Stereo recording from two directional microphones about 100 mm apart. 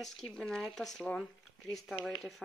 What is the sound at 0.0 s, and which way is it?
Speech, 5° left (ahead or behind).